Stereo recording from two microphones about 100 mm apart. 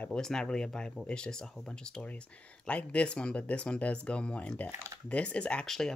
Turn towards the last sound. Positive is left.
turn(degrees=5)  # may be behind; listen again after turning